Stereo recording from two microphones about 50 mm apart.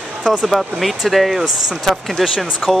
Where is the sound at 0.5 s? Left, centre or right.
Centre.